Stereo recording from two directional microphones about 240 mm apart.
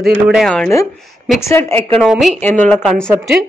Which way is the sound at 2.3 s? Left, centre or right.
Right.